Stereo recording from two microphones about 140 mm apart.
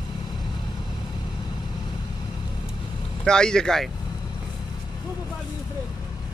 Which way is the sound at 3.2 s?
5° left (ahead or behind).